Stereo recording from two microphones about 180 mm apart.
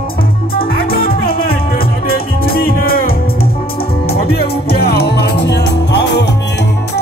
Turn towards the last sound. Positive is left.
turn(degrees=70)  # may be behind; listen again after turning